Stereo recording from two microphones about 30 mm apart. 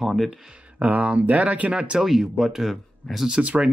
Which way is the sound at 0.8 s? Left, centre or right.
Right.